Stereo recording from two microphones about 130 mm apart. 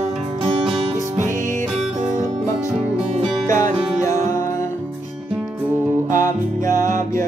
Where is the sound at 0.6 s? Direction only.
45° right (ahead or behind).